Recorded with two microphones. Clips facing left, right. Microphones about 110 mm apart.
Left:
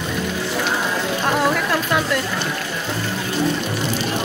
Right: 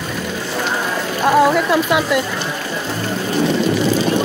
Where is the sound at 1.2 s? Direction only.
10° right (ahead or behind).